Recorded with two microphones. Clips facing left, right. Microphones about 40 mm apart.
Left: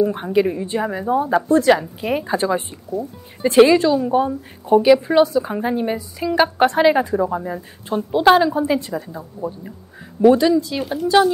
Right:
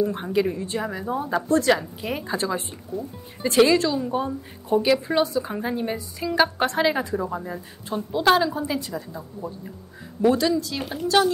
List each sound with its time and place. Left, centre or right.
0.0 s speech: centre